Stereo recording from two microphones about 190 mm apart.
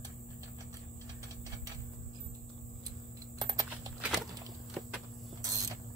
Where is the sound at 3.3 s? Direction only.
20° right (ahead or behind).